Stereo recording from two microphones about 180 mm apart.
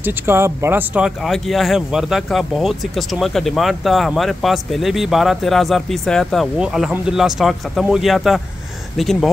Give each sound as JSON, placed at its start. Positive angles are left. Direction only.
{"t": 0.0, "sound": "speech", "side_deg": -15}